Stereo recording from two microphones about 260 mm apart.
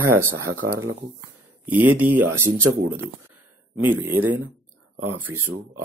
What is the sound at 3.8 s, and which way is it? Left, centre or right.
Speech, centre.